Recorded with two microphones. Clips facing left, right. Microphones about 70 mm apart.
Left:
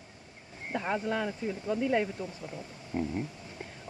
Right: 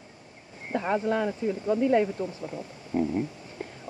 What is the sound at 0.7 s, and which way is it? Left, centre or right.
Speech, centre.